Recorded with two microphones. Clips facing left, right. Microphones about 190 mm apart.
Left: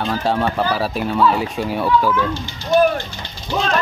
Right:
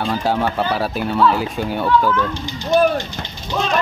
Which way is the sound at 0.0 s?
Centre (ahead or behind).